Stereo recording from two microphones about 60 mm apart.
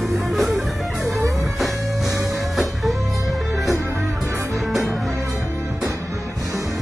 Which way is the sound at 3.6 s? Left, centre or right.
Right.